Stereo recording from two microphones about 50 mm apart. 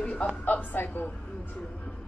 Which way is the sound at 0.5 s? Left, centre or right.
Left.